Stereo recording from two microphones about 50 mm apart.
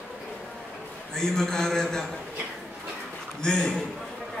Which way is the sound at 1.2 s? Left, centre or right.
Centre.